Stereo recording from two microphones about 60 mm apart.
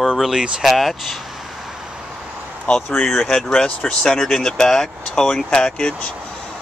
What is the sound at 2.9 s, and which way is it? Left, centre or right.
Speech, centre.